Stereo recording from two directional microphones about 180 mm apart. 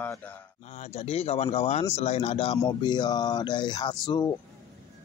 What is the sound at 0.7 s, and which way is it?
Speech, 40° left (ahead or behind).